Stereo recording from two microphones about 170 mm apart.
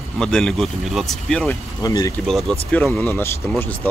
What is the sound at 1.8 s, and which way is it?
Speech, 20° left (ahead or behind).